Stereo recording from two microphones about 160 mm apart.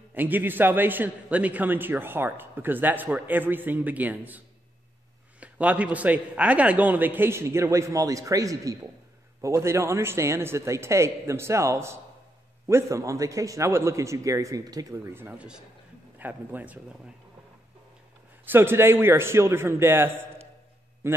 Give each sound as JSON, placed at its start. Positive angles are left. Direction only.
{"t": 0.1, "sound": "a man's voice", "side_deg": -10}
{"t": 5.4, "sound": "a man's voice", "side_deg": -10}
{"t": 18.4, "sound": "a man's voice", "side_deg": -15}